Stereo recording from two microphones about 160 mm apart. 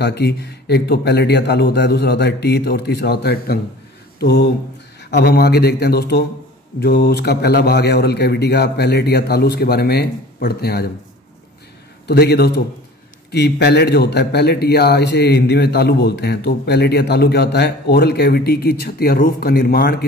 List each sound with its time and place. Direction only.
0.0 s speech: 90° left
4.2 s a sound: 90° left
5.1 s a man's voice: 90° left
12.1 s speech: 90° left; by 20.1 s 70° left (ahead or behind)